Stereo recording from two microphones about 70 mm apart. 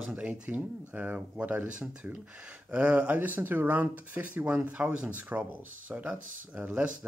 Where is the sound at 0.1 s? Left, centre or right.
Right.